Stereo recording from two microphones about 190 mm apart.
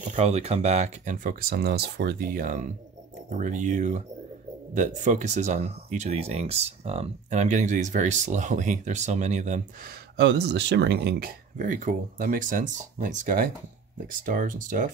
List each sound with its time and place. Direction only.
0.0 s speech: 35° right (ahead or behind)
10.1 s speech: 60° right (ahead or behind); by 14.9 s 45° right (ahead or behind)